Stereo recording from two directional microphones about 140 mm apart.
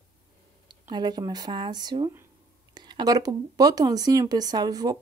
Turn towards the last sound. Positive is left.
turn(degrees=-30)  # may be behind; listen again after turning